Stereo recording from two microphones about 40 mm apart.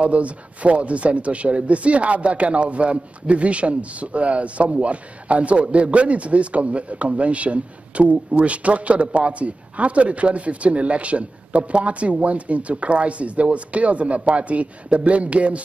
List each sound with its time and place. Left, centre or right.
0.0 s speech: right